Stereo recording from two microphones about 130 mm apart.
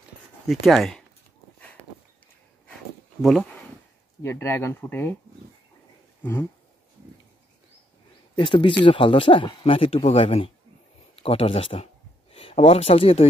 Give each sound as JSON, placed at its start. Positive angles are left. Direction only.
{"t": 0.5, "sound": "speech", "side_deg": 0}
{"t": 3.2, "sound": "speech", "side_deg": 0}
{"t": 4.2, "sound": "speech", "side_deg": 20}
{"t": 8.4, "sound": "speech", "side_deg": 35}